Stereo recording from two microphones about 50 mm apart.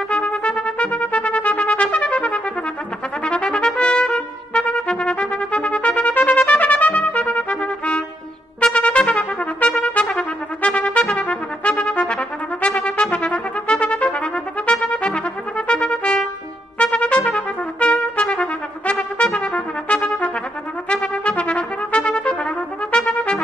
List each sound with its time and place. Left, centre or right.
0.1 s trumpet: left